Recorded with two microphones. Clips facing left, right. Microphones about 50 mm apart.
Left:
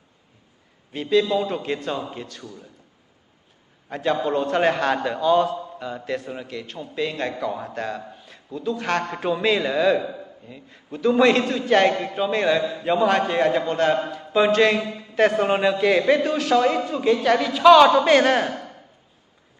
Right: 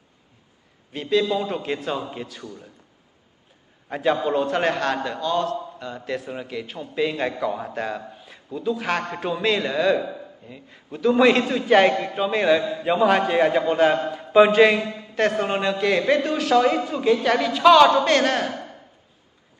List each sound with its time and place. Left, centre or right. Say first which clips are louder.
0.9 s a man's voice: left 2 dB; centre
2.4 s a man's voice: right 1 dB; right
3.9 s a man's voice: right 1 dB; centre
14.1 s a sound: right 4 dB; centre
15.1 s a man's voice: left 3 dB; centre